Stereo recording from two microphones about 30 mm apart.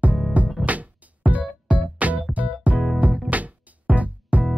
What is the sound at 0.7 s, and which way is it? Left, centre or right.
Music, right.